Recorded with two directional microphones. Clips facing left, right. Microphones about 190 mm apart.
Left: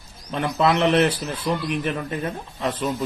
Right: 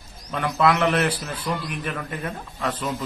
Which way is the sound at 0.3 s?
25° left (ahead or behind).